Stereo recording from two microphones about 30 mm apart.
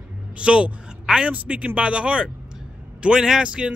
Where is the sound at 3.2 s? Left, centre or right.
Right.